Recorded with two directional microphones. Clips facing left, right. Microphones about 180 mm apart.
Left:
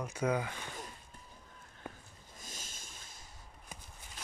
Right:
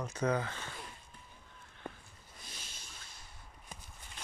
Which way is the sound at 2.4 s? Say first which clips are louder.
Left 3 dB; 45° left (ahead or behind).